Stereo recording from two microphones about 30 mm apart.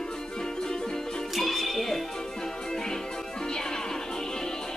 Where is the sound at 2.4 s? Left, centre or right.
Centre.